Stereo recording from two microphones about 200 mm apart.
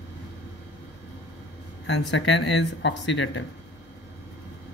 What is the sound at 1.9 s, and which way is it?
Speech, 65° left (ahead or behind).